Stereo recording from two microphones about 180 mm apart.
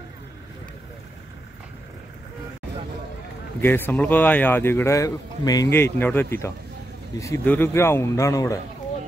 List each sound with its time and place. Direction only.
3.6 s speech: 10° left (ahead or behind)